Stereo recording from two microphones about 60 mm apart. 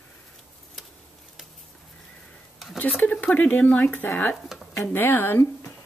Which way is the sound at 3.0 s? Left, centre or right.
Left.